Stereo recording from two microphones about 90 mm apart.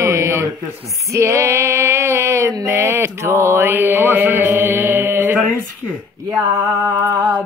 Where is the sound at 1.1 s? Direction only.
30° right (ahead or behind).